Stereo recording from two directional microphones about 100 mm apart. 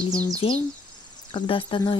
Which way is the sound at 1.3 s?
55° left (ahead or behind).